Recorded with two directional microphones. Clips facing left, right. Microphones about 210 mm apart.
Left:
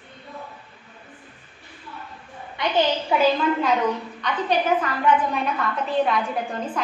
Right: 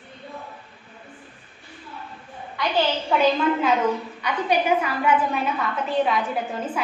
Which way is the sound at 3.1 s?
Centre (ahead or behind).